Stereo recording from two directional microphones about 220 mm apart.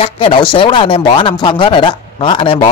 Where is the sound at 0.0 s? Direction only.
25° left (ahead or behind).